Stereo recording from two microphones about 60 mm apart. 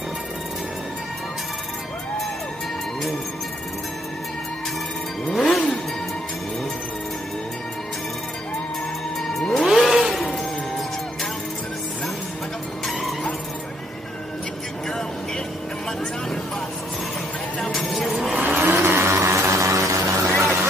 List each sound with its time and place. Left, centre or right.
5.3 s music: centre
9.5 s music: centre
14.9 s vehicle: centre
17.6 s a sound: centre
18.4 s vehicle: right